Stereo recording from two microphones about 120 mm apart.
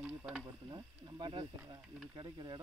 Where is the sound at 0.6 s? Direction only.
35° right (ahead or behind).